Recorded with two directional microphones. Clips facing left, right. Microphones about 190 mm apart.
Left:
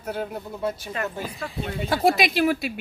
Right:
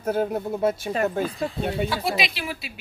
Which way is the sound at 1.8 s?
50° left (ahead or behind).